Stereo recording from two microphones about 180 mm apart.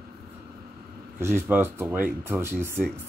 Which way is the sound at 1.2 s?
15° right (ahead or behind).